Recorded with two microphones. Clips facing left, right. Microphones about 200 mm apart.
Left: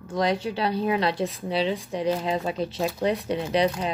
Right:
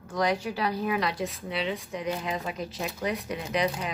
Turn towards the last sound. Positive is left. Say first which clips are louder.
# left 5 dB
turn(degrees=30)  # may be behind; listen again after turning